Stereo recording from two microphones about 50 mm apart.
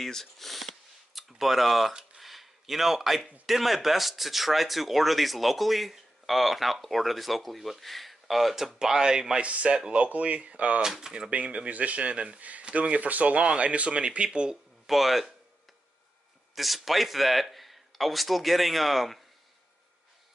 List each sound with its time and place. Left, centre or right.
0.0 s a sound: centre
3.4 s speech: centre
9.5 s speech: right
10.8 s speech: centre
11.2 s speech: right
14.9 s speech: centre
16.5 s speech: centre